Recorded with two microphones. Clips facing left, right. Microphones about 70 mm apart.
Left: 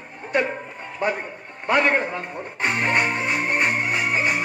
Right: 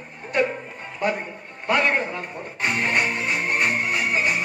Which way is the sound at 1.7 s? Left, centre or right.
Left.